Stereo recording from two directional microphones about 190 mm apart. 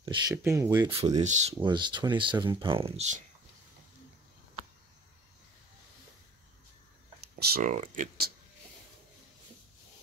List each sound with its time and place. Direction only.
0.0 s speech: 25° right (ahead or behind)
0.4 s speech: 15° right (ahead or behind)
1.2 s speech: 40° right (ahead or behind)
1.6 s speech: 25° right (ahead or behind)
7.3 s speech: 45° right (ahead or behind)